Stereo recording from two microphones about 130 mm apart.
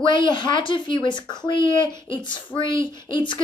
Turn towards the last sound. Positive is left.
turn(degrees=40)  # may be behind; listen again after turning